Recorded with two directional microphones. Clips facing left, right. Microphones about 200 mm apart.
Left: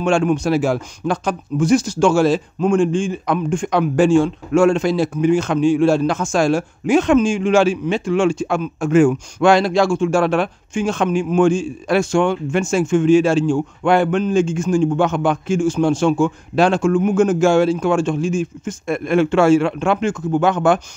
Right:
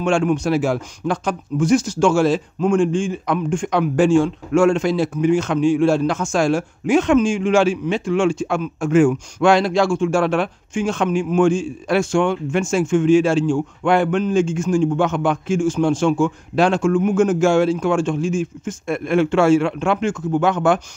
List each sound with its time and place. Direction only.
0.0 s speech: 35° left (ahead or behind)